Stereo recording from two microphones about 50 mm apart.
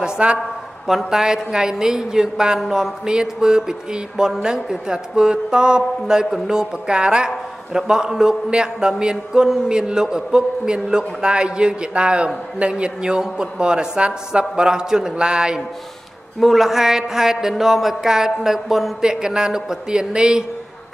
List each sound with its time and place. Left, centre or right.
0.0 s a sound: right
0.8 s a man's voice: centre
16.3 s a man's voice: centre